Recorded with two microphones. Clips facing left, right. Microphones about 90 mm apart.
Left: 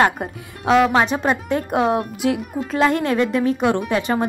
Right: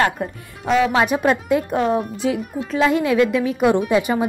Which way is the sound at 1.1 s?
20° left (ahead or behind).